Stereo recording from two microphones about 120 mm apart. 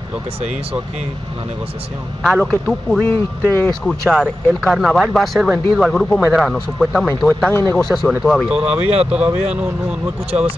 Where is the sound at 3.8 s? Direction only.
5° left (ahead or behind).